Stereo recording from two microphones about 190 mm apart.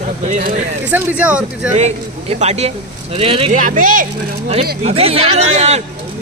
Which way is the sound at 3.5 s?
45° right (ahead or behind).